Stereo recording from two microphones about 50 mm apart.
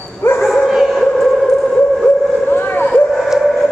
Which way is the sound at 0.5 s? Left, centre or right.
Centre.